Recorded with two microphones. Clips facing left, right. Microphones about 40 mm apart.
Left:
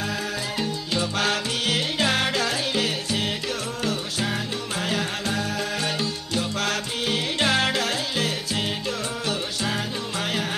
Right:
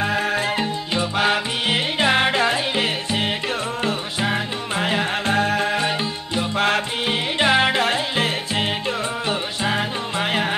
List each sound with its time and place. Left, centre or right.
0.0 s music: right